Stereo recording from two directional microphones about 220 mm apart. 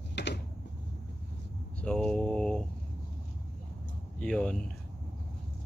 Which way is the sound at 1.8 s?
5° left (ahead or behind).